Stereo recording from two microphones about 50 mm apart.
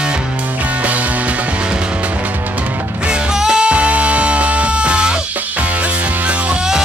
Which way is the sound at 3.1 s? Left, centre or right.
Centre.